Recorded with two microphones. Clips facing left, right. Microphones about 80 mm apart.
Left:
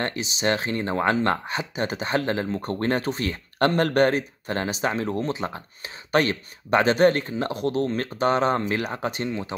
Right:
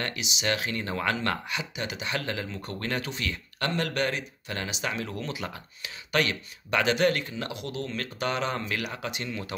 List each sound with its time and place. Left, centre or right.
0.0 s speech: left